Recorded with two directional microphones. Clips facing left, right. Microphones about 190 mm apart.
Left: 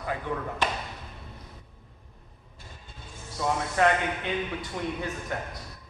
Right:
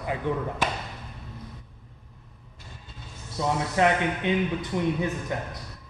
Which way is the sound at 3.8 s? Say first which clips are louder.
Right 1 dB; 20° right (ahead or behind).